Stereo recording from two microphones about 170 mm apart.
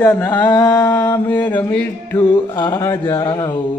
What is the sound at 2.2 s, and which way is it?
Music, 25° left (ahead or behind).